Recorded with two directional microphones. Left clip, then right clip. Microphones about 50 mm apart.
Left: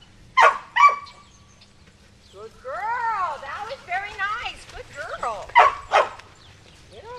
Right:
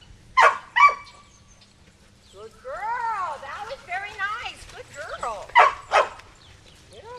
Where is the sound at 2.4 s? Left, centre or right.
Centre.